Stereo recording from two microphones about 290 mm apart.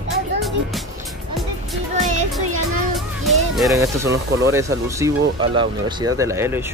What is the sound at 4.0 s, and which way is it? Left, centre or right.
Speech, centre.